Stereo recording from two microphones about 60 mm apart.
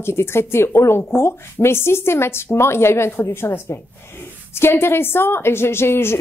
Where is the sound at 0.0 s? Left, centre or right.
Left.